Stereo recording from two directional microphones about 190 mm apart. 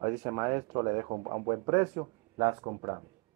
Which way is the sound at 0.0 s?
15° right (ahead or behind).